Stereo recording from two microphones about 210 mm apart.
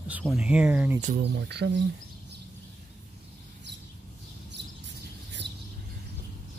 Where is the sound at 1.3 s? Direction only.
55° right (ahead or behind).